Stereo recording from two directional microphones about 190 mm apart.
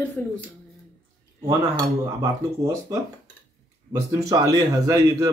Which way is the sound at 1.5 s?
15° right (ahead or behind).